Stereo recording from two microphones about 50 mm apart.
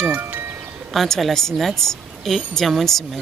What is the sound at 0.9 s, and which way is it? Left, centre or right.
A woman's voice, centre.